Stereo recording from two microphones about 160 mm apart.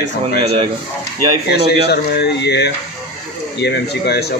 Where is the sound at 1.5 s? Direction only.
90° left.